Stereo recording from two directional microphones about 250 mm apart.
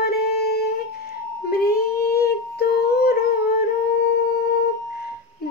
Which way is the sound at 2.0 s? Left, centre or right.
Left.